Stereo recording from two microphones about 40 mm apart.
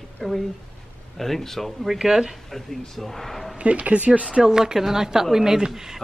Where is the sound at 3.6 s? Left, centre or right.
Right.